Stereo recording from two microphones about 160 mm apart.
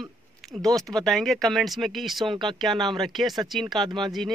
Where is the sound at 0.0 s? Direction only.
Centre (ahead or behind).